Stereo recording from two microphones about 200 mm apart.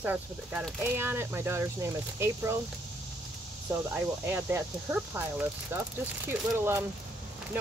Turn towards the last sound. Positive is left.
turn(degrees=-10)  # may be behind; listen again after turning